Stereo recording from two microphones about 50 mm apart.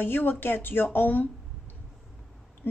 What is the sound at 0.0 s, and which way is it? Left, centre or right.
A woman's voice, left.